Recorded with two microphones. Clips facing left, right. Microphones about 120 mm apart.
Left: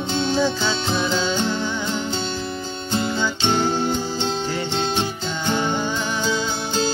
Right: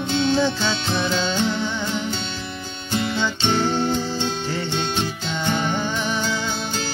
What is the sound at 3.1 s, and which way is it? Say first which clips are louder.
Music: even; 5° left (ahead or behind).